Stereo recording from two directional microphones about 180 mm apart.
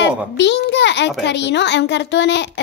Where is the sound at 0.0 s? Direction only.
75° left (ahead or behind).